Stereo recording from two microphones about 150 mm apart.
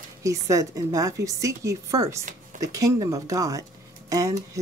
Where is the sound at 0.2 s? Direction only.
20° right (ahead or behind).